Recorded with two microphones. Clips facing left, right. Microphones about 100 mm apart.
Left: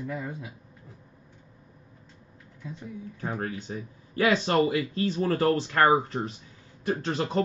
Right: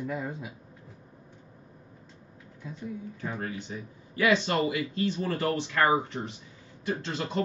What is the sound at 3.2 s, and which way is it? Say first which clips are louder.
Speech: left 4 dB; 40° left (ahead or behind).